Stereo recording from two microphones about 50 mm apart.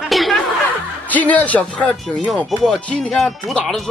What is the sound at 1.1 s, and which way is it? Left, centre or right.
Speech, left.